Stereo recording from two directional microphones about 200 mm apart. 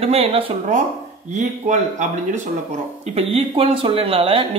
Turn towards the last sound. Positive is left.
turn(degrees=-25)  # may be behind; listen again after turning